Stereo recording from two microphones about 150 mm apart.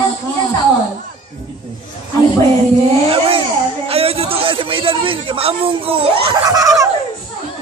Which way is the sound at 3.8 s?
40° right (ahead or behind).